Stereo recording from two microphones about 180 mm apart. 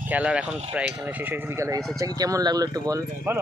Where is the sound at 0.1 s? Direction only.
5° right (ahead or behind).